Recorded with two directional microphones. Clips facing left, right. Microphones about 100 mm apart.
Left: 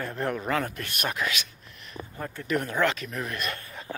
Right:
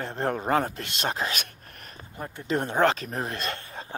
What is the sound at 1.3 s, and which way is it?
Speech, 50° right (ahead or behind).